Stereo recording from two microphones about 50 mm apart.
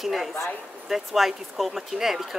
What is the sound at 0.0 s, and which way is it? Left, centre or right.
A woman's voice, centre.